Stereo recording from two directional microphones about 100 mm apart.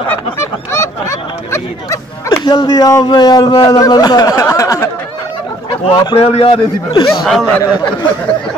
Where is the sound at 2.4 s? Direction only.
50° left (ahead or behind); by 4.9 s 30° left (ahead or behind).